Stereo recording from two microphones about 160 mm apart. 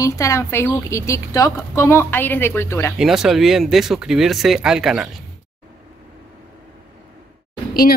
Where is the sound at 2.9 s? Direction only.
5° right (ahead or behind).